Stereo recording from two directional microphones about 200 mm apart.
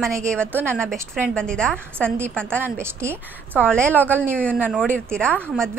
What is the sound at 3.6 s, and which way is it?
Speech, 5° left (ahead or behind).